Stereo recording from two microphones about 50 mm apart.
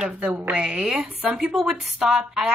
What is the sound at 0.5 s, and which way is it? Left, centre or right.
Speech, centre.